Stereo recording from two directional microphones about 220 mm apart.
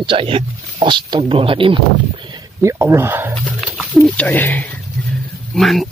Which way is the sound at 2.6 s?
10° right (ahead or behind).